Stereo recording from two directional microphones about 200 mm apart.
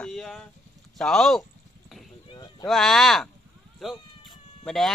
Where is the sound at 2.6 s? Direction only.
Centre (ahead or behind).